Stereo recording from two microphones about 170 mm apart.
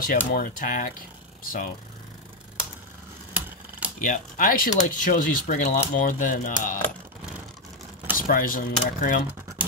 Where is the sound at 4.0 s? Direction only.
55° left (ahead or behind).